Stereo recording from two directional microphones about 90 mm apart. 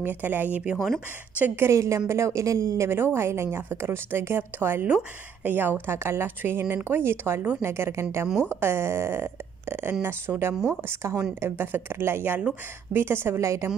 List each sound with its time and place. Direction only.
0.0 s speech: 20° right (ahead or behind)
1.4 s a woman's voice: 30° right (ahead or behind)